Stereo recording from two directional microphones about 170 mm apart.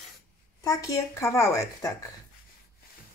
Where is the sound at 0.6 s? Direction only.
20° left (ahead or behind).